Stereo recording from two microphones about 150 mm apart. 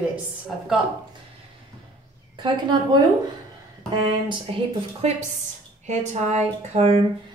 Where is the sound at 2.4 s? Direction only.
30° right (ahead or behind).